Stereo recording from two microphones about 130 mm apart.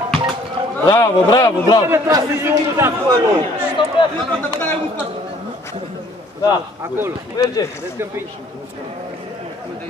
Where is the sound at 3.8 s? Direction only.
40° left (ahead or behind).